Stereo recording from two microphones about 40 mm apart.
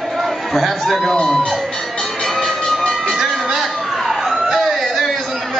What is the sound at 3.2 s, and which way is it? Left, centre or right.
Music, centre.